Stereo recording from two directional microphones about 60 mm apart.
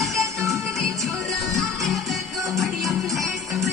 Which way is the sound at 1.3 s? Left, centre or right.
Centre.